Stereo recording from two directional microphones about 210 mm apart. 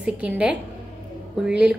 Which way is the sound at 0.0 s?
5° right (ahead or behind).